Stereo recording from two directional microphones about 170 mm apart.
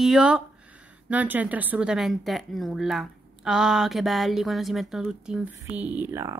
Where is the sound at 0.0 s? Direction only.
5° right (ahead or behind).